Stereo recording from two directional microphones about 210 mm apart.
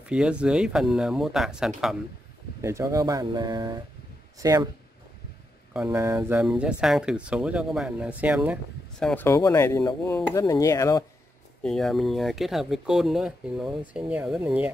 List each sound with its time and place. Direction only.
0.0 s speech: 5° right (ahead or behind)
2.6 s speech: 15° right (ahead or behind)
5.7 s speech: 10° right (ahead or behind)
9.0 s speech: 10° left (ahead or behind)
11.6 s speech: centre (ahead or behind)